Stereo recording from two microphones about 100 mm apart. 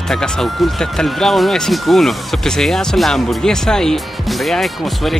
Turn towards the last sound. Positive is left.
turn(degrees=0)  # may be behind; listen again after turning